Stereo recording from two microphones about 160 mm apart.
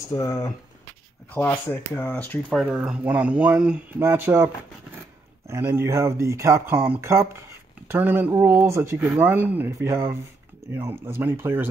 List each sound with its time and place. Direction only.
0.1 s speech: 20° left (ahead or behind)
2.6 s speech: 5° right (ahead or behind)
5.5 s speech: 15° right (ahead or behind)